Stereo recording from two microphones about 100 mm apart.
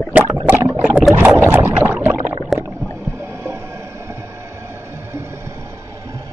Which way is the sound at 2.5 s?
Centre (ahead or behind).